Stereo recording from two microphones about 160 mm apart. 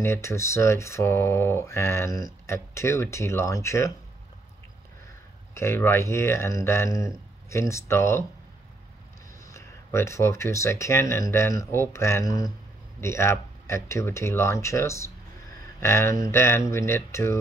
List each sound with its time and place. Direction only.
0.0 s speech: 15° left (ahead or behind)
5.5 s speech: 15° left (ahead or behind)
9.5 s speech: 15° left (ahead or behind)